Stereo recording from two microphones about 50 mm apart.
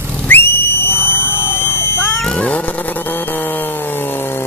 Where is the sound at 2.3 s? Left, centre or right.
Left.